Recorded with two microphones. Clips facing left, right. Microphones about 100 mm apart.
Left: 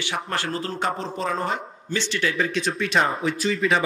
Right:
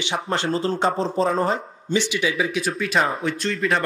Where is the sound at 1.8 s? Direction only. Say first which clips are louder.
Right 4 dB; 15° right (ahead or behind); by 3.8 s centre (ahead or behind).